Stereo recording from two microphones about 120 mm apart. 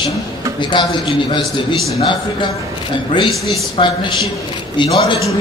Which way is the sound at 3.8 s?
40° left (ahead or behind).